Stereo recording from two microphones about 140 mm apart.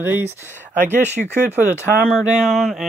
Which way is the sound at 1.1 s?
15° left (ahead or behind).